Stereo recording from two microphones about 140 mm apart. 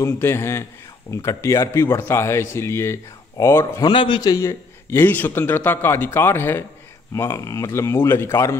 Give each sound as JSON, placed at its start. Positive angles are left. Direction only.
{"t": 0.0, "sound": "a man's voice", "side_deg": 15}
{"t": 3.8, "sound": "a man's voice", "side_deg": 35}